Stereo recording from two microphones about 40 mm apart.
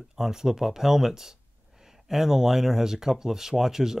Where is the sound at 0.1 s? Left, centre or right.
Centre.